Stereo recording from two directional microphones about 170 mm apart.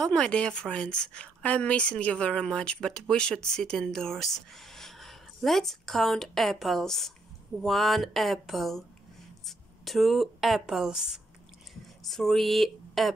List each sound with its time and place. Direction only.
0.0 s speech: 5° left (ahead or behind)